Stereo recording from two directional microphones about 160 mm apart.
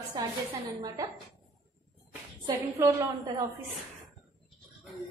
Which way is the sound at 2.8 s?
15° right (ahead or behind).